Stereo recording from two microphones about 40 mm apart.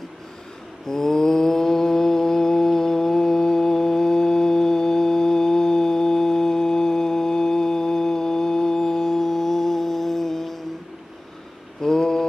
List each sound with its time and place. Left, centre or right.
0.8 s mantra: centre
11.8 s mantra: centre